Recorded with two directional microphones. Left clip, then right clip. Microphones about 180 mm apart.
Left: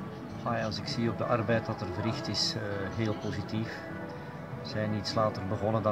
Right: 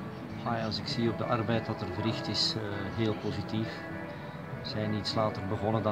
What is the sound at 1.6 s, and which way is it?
Speech, 50° left (ahead or behind).